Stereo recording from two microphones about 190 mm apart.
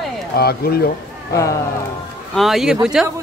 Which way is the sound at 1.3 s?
15° left (ahead or behind).